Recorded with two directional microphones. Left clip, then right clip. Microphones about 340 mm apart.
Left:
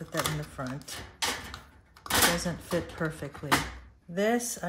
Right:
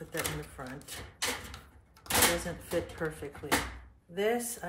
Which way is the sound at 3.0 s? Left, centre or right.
Left.